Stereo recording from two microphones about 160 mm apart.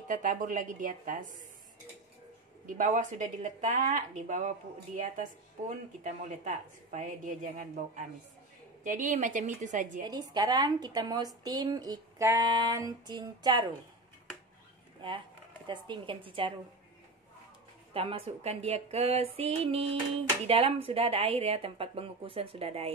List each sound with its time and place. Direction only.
0.1 s a woman's voice: 55° right (ahead or behind)
2.6 s speech: 55° right (ahead or behind)
10.0 s a woman's voice: 25° right (ahead or behind)
15.0 s speech: 30° right (ahead or behind)
17.9 s speech: 35° right (ahead or behind)